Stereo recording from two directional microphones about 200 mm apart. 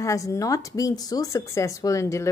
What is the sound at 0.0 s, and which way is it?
Speech, 15° left (ahead or behind).